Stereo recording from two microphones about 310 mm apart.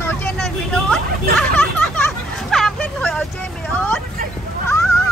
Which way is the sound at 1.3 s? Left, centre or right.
Centre.